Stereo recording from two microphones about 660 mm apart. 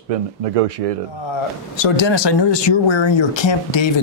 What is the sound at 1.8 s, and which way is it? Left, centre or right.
Speech, left.